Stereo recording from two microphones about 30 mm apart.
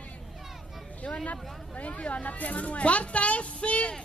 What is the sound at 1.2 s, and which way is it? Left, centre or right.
Speech, left.